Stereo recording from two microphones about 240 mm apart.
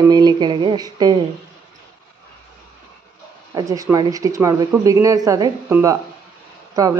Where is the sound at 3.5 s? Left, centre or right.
Centre.